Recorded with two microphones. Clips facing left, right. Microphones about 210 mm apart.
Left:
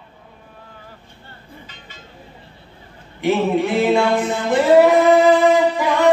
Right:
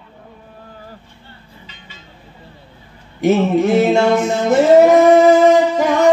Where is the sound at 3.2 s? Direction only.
45° right (ahead or behind).